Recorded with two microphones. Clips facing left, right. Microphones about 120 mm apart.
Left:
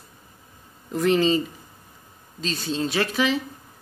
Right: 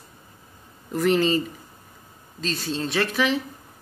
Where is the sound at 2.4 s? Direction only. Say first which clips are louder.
Left 1 dB; centre (ahead or behind).